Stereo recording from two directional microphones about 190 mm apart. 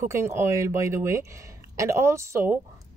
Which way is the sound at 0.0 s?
15° right (ahead or behind).